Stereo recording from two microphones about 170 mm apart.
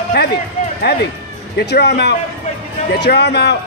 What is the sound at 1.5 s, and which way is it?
Speech, 75° left (ahead or behind).